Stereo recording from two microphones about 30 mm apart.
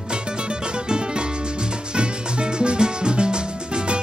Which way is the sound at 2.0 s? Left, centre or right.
Right.